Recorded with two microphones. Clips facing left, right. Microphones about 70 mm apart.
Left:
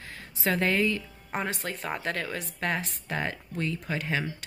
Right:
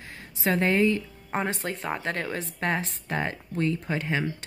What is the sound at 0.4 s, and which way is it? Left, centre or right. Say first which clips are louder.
Speech: right 3 dB; right.